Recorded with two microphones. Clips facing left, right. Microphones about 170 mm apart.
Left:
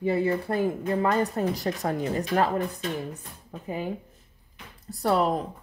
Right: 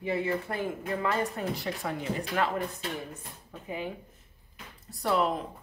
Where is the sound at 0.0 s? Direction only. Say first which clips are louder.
Left 5 dB; 40° left (ahead or behind).